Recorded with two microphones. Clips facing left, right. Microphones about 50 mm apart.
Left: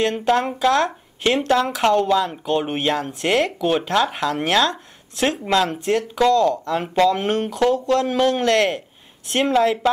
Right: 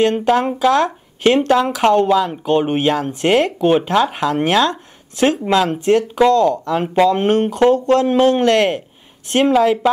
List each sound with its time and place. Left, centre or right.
0.0 s speech: centre
8.5 s speech: right
9.3 s speech: centre